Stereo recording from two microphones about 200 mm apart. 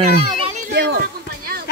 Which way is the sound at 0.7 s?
60° right (ahead or behind).